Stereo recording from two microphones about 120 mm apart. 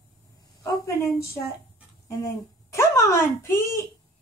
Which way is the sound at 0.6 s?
25° left (ahead or behind).